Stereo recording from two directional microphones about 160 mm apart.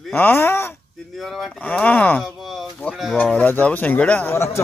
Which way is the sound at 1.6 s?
10° left (ahead or behind).